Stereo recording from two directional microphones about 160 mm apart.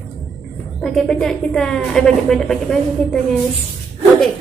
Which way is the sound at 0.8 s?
Centre (ahead or behind).